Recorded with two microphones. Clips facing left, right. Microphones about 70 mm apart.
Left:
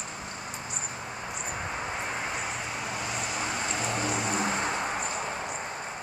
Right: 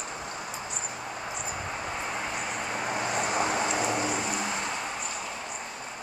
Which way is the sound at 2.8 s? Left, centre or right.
Right.